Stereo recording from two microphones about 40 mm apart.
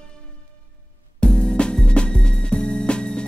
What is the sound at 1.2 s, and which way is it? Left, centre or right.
Music, left.